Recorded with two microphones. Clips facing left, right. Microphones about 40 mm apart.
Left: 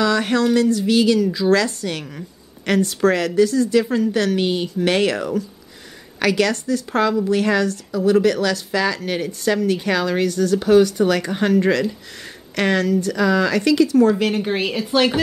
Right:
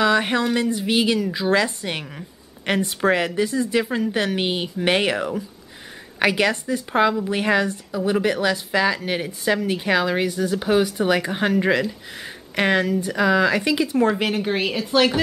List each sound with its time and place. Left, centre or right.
0.0 s a woman's voice: right
14.3 s speech: centre